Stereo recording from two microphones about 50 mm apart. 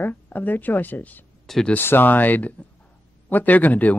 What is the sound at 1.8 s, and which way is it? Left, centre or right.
A woman's voice, left.